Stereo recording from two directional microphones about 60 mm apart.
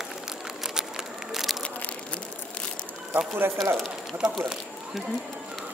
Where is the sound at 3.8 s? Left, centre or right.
Centre.